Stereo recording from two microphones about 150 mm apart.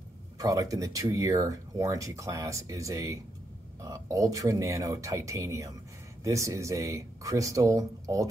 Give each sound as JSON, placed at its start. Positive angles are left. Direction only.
{"t": 0.4, "sound": "speech", "side_deg": -25}